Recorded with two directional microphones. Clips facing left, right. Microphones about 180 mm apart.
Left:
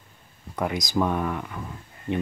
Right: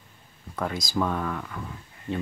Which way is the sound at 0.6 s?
20° left (ahead or behind).